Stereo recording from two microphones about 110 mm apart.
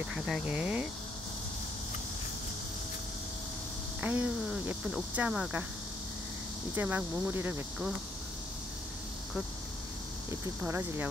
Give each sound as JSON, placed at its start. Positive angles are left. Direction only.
{"t": 0.1, "sound": "speech", "side_deg": -5}
{"t": 4.0, "sound": "speech", "side_deg": -15}
{"t": 6.7, "sound": "speech", "side_deg": -15}
{"t": 10.6, "sound": "speech", "side_deg": -20}